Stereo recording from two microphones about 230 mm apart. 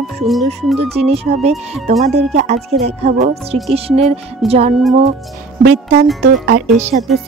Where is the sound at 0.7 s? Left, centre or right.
Right.